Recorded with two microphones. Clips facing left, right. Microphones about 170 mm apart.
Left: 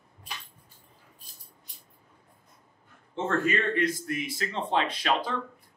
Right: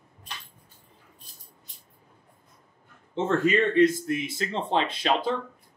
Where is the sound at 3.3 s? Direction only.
20° right (ahead or behind).